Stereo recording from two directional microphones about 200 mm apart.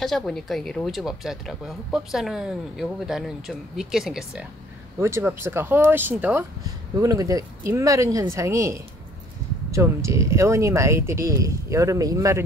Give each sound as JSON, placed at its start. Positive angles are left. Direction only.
{"t": 0.0, "sound": "speech", "side_deg": 0}
{"t": 5.0, "sound": "speech", "side_deg": -15}